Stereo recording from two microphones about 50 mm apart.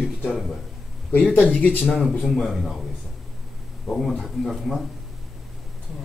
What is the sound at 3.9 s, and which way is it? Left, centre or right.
Speech, centre.